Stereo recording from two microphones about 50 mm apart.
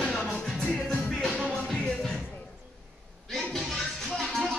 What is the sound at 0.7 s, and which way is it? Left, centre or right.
Music, centre.